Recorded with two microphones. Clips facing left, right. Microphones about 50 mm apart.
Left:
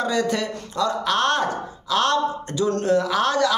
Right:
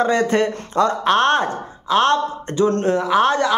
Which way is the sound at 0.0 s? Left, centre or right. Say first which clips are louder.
Right 6 dB; right.